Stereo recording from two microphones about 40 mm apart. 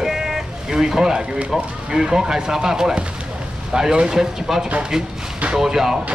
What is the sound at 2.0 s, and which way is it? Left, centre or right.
Speech, centre.